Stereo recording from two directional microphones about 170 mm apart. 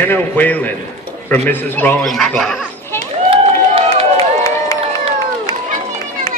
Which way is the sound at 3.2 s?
35° right (ahead or behind).